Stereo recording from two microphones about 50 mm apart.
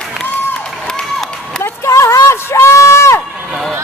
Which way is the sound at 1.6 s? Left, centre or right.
Left.